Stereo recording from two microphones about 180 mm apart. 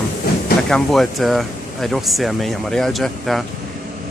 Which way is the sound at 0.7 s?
Centre (ahead or behind).